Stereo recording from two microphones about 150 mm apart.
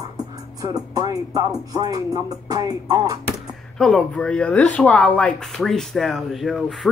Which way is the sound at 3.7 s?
5° left (ahead or behind).